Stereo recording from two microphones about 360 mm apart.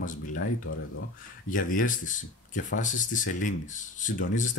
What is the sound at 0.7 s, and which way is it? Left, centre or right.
Speech, left.